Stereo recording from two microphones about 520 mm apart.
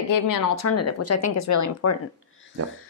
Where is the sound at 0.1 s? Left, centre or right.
Left.